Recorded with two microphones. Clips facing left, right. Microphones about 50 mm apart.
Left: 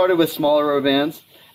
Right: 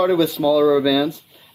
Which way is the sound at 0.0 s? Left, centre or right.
Centre.